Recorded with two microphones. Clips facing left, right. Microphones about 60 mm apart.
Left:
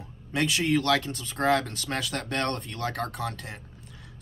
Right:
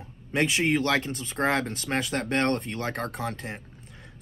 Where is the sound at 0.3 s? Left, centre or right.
Right.